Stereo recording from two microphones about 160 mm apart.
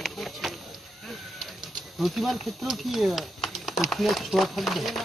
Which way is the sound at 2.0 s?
Centre (ahead or behind).